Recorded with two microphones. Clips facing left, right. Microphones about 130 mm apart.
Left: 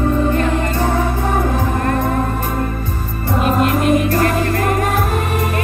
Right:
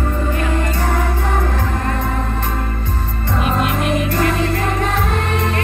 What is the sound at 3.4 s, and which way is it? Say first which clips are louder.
Music: left 4 dB; 50° left (ahead or behind).